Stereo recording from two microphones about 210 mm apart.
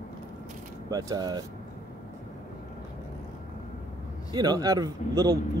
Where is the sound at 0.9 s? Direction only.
20° right (ahead or behind).